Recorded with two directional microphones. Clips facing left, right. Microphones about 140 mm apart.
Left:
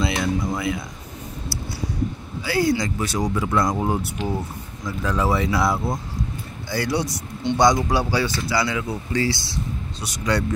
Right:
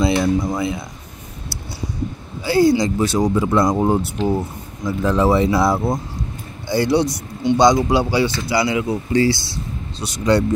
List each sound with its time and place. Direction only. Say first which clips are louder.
0.0 s speech: right 6 dB; 30° right (ahead or behind)
2.4 s speech: right 6 dB; 30° right (ahead or behind)